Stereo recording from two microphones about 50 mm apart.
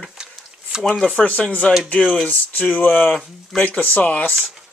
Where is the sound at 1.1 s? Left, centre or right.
Left.